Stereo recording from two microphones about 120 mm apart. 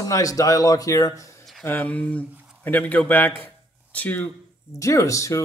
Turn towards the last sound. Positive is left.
turn(degrees=25)  # may be behind; listen again after turning